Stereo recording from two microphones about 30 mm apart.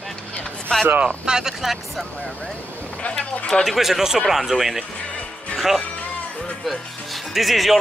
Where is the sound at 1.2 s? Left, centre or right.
Right.